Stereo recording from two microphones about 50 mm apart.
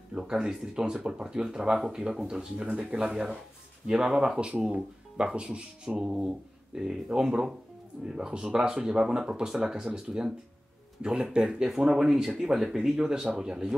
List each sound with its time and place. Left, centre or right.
0.1 s speech: centre